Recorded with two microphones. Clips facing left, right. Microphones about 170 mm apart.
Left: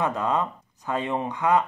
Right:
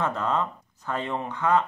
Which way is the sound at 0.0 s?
15° left (ahead or behind).